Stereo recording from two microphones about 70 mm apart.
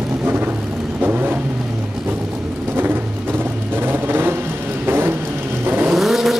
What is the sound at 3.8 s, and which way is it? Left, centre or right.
Vehicle, right.